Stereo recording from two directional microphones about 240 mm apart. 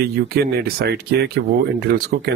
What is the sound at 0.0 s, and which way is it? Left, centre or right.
A man's voice, right.